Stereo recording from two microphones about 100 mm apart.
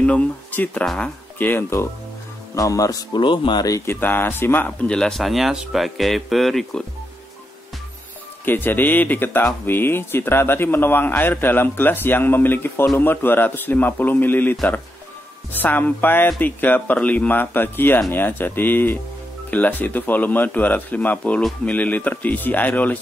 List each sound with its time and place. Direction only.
0.0 s a man's voice: 15° left (ahead or behind)
1.4 s a man's voice: 20° left (ahead or behind)
2.5 s speech: 35° left (ahead or behind)
3.2 s speech: 55° left (ahead or behind)
3.6 s a man's voice: 30° left (ahead or behind)
4.8 s speech: 5° left (ahead or behind)
8.5 s a man's voice: 20° left (ahead or behind)